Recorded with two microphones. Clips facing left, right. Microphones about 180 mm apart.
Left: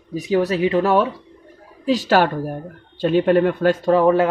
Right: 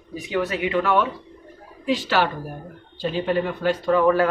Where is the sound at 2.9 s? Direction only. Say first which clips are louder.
Left 7 dB; 60° left (ahead or behind).